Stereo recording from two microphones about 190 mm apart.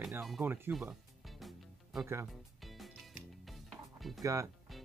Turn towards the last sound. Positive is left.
turn(degrees=0)  # may be behind; listen again after turning